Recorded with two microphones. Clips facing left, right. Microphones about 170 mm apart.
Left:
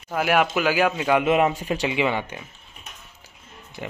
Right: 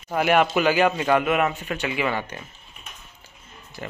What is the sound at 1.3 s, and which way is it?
Speech, 25° left (ahead or behind).